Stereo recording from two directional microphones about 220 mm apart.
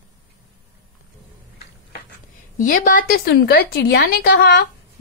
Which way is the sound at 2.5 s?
40° left (ahead or behind).